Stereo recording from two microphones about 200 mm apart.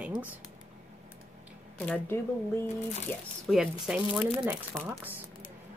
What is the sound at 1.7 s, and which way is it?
Speech, 5° left (ahead or behind).